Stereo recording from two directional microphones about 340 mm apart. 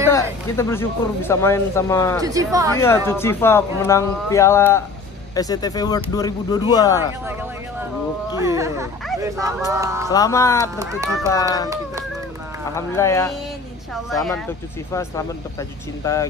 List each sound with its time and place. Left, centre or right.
0.1 s speech: centre
2.2 s speech: centre
2.7 s speech: centre
8.4 s speech: centre
10.0 s speech: centre
10.8 s speech: centre
12.7 s speech: centre